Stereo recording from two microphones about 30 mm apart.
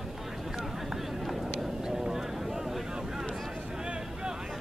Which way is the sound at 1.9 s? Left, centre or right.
Centre.